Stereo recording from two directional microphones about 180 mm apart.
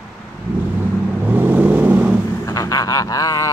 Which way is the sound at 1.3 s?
10° right (ahead or behind).